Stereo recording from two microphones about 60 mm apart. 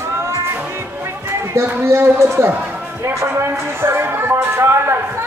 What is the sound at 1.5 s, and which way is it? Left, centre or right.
Speech, right.